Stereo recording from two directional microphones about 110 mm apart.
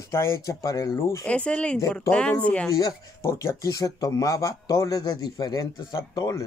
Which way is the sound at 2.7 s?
30° left (ahead or behind).